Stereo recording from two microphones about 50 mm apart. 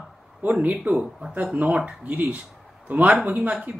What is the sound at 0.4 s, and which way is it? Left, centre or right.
Speech, right.